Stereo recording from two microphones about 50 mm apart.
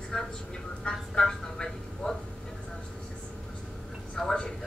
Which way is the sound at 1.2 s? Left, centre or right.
Centre.